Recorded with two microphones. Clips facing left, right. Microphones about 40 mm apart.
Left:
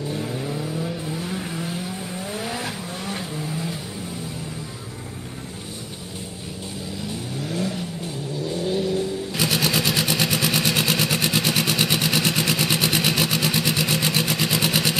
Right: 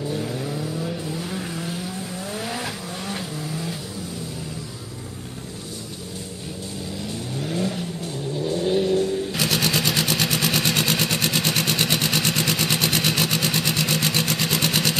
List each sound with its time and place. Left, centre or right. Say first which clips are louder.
0.1 s vehicle: even; centre
7.4 s vehicle: right 1 dB; centre
8.6 s vehicle: right 3 dB; centre
9.3 s vehicle: even; centre